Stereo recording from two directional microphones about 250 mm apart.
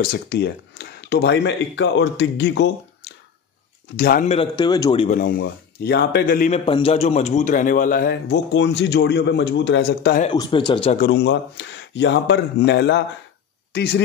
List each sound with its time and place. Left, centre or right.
0.0 s speech: left
4.0 s a man's voice: left
5.2 s a man's voice: left
6.6 s a man's voice: left
10.3 s a man's voice: centre
11.0 s a man's voice: left